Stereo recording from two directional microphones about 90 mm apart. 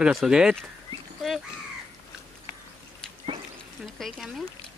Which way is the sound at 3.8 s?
Centre (ahead or behind).